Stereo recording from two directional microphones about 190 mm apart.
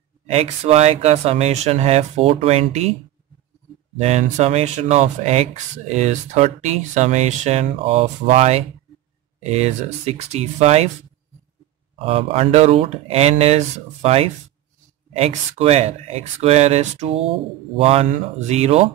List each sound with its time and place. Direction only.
0.3 s speech: 30° right (ahead or behind)
3.9 s speech: 40° right (ahead or behind)
12.0 s speech: 30° right (ahead or behind)